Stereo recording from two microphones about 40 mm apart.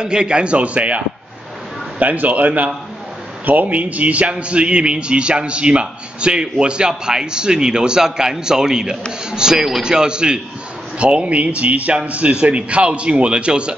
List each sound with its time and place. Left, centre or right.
0.0 s speech: right